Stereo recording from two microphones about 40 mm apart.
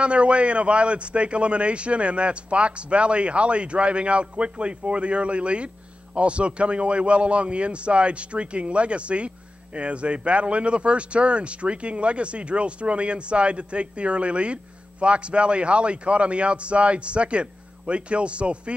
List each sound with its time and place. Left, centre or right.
0.0 s speech: right